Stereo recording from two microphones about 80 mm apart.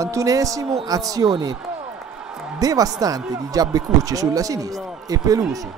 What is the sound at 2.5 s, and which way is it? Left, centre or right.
Speech, right.